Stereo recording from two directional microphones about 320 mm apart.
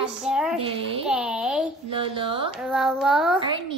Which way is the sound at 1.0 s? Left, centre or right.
Centre.